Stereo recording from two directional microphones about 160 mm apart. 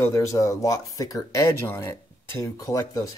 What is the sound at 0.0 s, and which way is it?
Speech, 20° left (ahead or behind).